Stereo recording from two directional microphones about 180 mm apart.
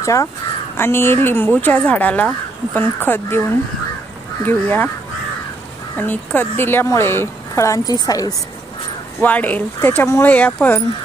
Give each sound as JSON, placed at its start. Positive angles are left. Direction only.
{"t": 0.0, "sound": "speech", "side_deg": 20}
{"t": 4.5, "sound": "speech", "side_deg": 10}
{"t": 5.9, "sound": "speech", "side_deg": 10}
{"t": 9.2, "sound": "speech", "side_deg": 10}